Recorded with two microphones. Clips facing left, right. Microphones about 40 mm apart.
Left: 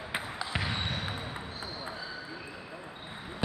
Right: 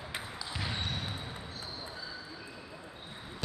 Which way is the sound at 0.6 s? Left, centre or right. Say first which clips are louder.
Left 3 dB; left.